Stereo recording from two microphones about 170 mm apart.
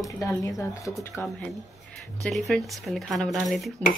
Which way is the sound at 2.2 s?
Centre (ahead or behind).